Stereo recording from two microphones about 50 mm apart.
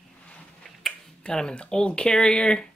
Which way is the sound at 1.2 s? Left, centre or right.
Centre.